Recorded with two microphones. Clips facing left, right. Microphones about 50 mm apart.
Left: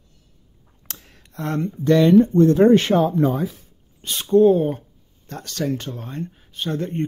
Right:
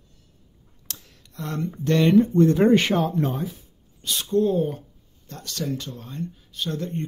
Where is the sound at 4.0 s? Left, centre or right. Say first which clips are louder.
Left 7 dB; left.